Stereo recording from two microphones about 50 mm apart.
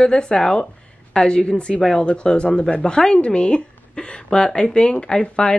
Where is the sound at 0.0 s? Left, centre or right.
Centre.